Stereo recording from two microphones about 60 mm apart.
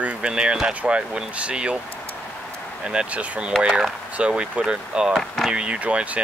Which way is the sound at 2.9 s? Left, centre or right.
Centre.